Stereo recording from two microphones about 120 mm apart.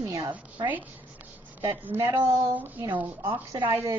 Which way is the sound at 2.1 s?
30° right (ahead or behind).